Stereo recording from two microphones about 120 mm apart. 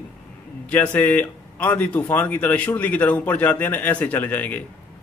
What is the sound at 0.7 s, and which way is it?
Speech, 15° left (ahead or behind).